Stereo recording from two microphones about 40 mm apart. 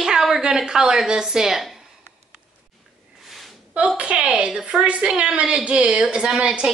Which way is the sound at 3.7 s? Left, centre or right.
Right.